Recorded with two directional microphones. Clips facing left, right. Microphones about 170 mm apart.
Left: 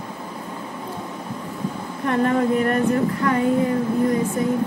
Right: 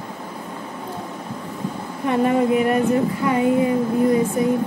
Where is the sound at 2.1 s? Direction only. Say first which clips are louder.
Right 2 dB; 10° right (ahead or behind).